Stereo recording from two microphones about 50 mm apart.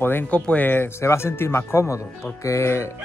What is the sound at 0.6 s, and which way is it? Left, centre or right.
Speech, left.